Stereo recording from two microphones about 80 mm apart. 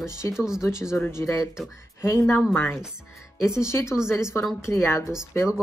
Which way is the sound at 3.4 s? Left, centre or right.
Left.